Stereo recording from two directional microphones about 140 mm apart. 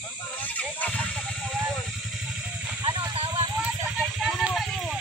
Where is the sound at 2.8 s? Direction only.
35° right (ahead or behind).